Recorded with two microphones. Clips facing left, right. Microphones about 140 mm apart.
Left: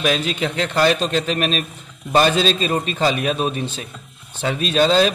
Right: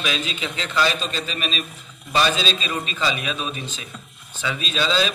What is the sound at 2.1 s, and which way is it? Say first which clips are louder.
Mantra: left 6 dB; 50° left (ahead or behind).